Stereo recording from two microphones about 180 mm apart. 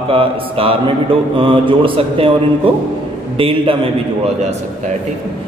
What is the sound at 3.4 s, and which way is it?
Speech, 30° right (ahead or behind).